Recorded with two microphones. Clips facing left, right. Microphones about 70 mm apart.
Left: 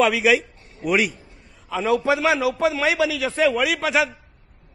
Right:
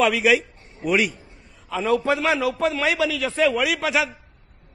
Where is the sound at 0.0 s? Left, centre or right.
Centre.